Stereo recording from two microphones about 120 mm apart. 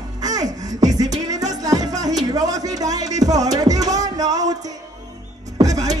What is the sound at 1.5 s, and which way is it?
Speech, 30° right (ahead or behind).